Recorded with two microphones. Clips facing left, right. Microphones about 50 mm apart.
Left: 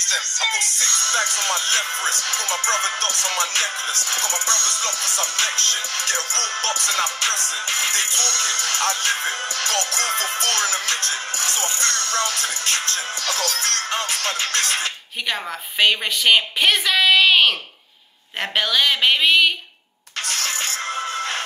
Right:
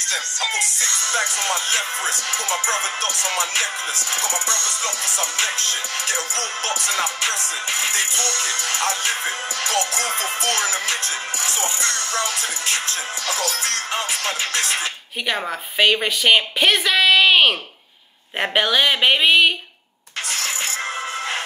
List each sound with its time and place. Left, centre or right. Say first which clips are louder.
0.0 s music: left 1 dB; left
2.3 s music: right 2 dB; right
3.3 s music: even; left
10.5 s music: right 1 dB; right
10.9 s music: even; left
12.9 s music: even; right
13.6 s music: even; left
15.8 s speech: right 1 dB; centre